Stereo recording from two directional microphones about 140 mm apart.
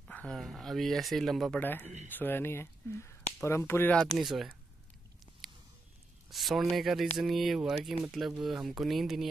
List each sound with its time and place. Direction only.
0.0 s speech: 5° left (ahead or behind)
1.6 s speech: 15° left (ahead or behind)
4.0 s speech: centre (ahead or behind)
5.4 s a sound: centre (ahead or behind)
6.3 s speech: centre (ahead or behind)